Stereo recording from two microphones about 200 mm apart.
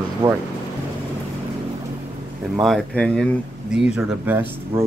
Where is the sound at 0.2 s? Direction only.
20° right (ahead or behind).